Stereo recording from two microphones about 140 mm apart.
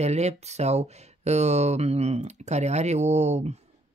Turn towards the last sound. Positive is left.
turn(degrees=-50)  # may be behind; listen again after turning